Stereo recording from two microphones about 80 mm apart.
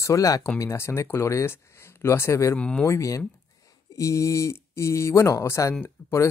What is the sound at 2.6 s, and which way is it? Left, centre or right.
Speech, centre.